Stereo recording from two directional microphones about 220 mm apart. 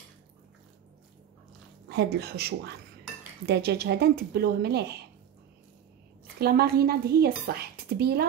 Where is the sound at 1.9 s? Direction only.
50° right (ahead or behind).